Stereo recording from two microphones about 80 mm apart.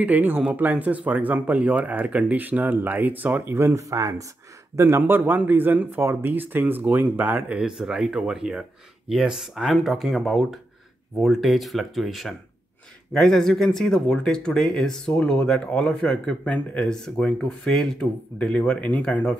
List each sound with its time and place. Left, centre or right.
0.0 s speech: right
3.5 s speech: right
4.7 s speech: right
7.7 s speech: centre